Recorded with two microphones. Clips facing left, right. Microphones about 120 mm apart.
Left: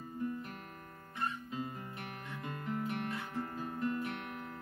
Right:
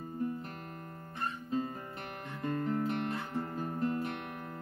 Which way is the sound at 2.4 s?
40° right (ahead or behind).